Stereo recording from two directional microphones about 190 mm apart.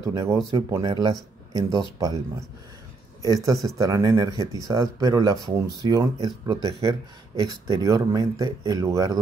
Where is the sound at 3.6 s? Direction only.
15° right (ahead or behind).